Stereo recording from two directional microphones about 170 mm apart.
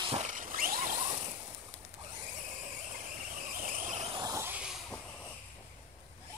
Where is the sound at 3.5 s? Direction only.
55° right (ahead or behind).